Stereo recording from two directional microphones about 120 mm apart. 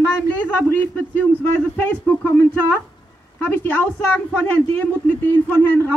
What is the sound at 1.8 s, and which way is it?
A woman's voice, 20° left (ahead or behind).